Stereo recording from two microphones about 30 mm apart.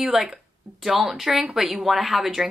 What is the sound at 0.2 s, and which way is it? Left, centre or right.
Speech, centre.